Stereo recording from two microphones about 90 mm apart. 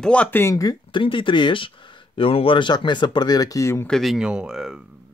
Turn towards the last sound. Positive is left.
turn(degrees=-5)  # may be behind; listen again after turning